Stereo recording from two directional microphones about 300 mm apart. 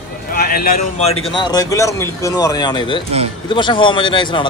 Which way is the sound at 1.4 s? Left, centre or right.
Centre.